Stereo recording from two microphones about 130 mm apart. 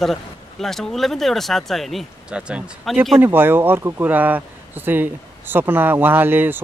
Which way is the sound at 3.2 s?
15° right (ahead or behind).